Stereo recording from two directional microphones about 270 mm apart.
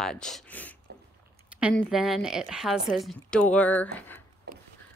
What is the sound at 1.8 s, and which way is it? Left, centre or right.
A woman's voice, centre.